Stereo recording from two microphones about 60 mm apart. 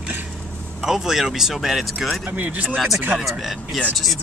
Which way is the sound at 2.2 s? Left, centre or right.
Right.